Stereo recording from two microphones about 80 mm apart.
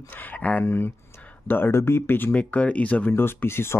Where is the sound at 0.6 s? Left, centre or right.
Left.